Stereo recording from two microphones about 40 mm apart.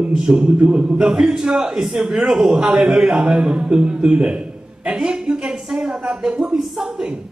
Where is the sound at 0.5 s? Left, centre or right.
Right.